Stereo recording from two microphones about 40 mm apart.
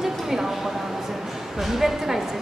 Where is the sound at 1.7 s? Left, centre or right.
Centre.